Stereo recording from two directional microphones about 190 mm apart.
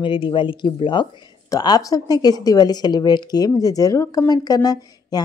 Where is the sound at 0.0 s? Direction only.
25° left (ahead or behind).